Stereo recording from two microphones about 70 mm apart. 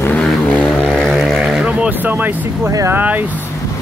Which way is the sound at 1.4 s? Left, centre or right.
Centre.